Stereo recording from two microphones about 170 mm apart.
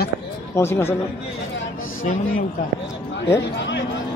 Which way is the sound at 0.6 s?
15° left (ahead or behind).